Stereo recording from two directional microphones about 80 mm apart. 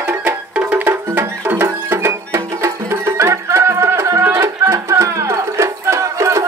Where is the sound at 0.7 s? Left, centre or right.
Right.